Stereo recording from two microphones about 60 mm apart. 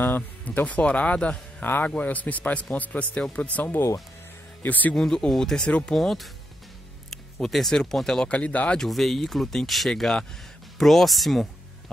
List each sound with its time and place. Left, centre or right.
0.0 s speech: left
1.6 s speech: left
4.9 s speech: centre
5.7 s speech: left
5.9 s speech: centre
8.3 s speech: left
8.7 s speech: centre